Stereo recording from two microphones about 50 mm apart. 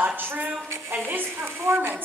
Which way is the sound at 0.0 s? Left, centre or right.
Right.